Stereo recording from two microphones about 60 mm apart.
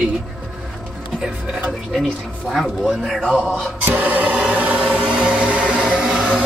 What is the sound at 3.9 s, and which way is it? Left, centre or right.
Speech, right.